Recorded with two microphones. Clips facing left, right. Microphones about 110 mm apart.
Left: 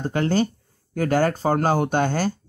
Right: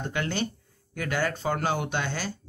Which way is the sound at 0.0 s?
35° left (ahead or behind).